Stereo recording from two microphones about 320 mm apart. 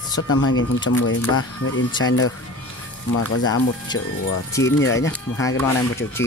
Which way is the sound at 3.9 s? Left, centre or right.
Centre.